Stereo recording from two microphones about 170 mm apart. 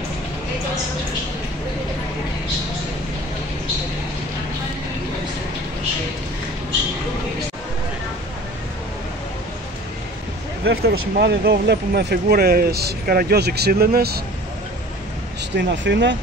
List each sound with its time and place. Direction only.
10.6 s speech: 80° right
15.5 s speech: 90° right